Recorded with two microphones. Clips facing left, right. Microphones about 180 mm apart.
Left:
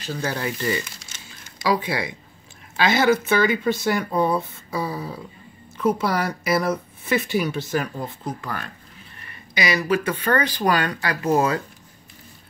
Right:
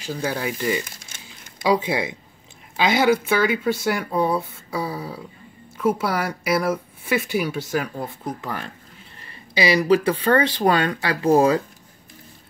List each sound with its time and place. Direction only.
0.0 s speech: 10° right (ahead or behind)
1.6 s speech: 25° right (ahead or behind)
8.4 s speech: 20° right (ahead or behind)